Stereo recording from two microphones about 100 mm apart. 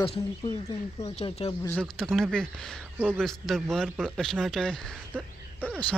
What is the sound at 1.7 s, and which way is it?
Speech, 5° left (ahead or behind).